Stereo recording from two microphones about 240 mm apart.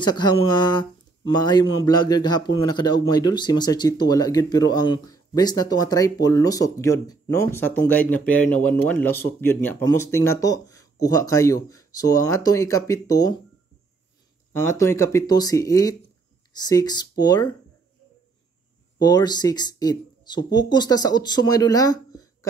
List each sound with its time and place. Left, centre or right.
0.0 s speech: centre
14.5 s speech: centre
18.9 s speech: centre